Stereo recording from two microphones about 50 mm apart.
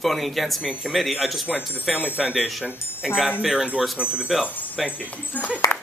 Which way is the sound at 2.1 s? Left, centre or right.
Centre.